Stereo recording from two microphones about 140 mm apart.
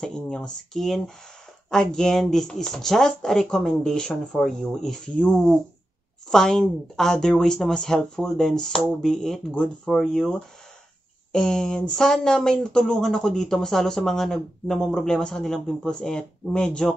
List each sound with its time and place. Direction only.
0.0 s speech: 5° left (ahead or behind)